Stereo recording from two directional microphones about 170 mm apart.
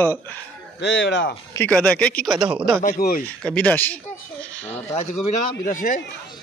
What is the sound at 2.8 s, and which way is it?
Speech, 55° left (ahead or behind).